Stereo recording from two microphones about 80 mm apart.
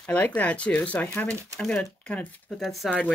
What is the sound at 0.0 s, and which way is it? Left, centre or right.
Speech, centre.